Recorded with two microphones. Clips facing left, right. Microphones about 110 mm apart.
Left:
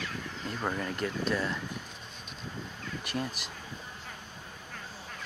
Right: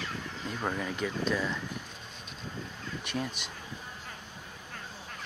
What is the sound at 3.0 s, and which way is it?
Speech, centre (ahead or behind).